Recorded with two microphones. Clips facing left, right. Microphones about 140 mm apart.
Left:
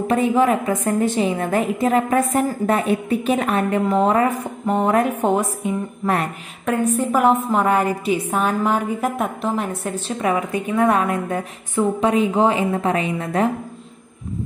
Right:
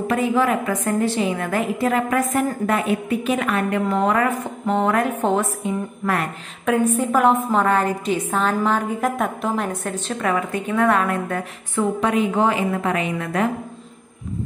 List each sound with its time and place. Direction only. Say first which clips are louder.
0.1 s a woman's voice: left 3 dB; 20° left (ahead or behind)
4.4 s a woman's voice: even; 15° left (ahead or behind)
6.6 s a woman's voice: right 1 dB; centre (ahead or behind); by 13.5 s 25° left (ahead or behind)